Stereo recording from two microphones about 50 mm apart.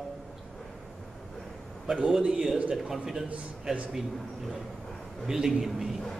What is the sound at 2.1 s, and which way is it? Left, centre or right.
A man's voice, centre.